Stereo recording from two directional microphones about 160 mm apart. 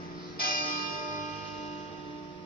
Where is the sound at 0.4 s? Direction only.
60° left (ahead or behind).